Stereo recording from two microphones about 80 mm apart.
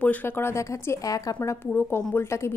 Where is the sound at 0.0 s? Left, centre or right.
Left.